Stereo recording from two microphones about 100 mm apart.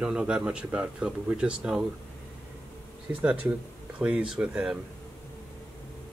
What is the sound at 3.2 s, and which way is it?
Speech, 15° right (ahead or behind).